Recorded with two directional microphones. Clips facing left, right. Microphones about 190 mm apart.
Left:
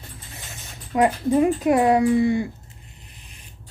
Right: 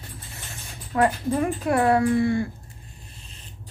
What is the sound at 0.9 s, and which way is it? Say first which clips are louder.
Speech: left 3 dB; 20° left (ahead or behind).